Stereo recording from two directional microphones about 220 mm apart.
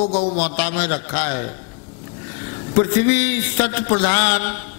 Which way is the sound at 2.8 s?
15° left (ahead or behind).